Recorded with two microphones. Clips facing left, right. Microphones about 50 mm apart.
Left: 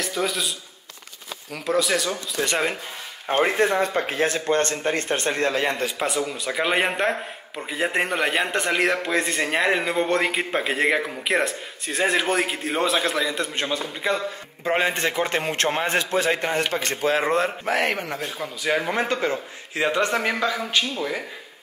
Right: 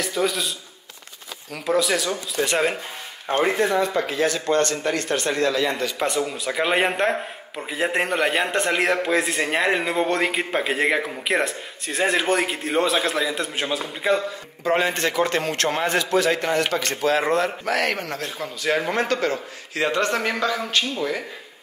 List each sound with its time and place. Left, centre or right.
0.0 s a man's voice: centre
1.5 s a man's voice: centre
3.3 s a man's voice: left
5.9 s a man's voice: centre
14.6 s a man's voice: centre
19.2 s a man's voice: left; by 21.2 s centre